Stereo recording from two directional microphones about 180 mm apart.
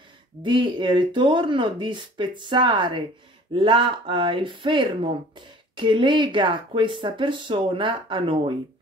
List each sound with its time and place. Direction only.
0.4 s speech: 25° right (ahead or behind)